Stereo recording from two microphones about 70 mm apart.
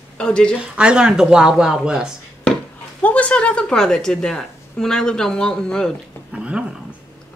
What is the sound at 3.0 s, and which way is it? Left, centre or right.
A woman's voice, centre.